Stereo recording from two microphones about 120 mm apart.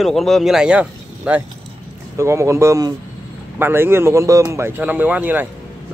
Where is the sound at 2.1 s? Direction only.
25° right (ahead or behind).